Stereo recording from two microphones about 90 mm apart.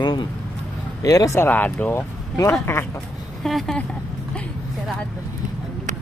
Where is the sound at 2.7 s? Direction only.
30° left (ahead or behind).